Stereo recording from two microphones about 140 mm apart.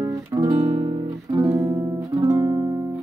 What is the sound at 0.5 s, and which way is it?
Guitar, 50° right (ahead or behind).